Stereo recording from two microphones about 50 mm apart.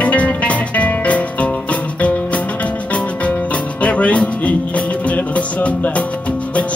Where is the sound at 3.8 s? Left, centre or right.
Left.